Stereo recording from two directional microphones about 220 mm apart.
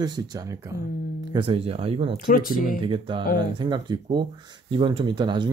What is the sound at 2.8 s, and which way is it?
Speech, 20° right (ahead or behind).